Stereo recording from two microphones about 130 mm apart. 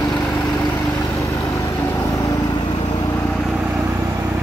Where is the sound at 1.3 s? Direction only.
25° left (ahead or behind).